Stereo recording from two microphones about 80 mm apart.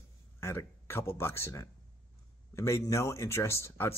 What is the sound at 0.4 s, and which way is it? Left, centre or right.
Speech, left.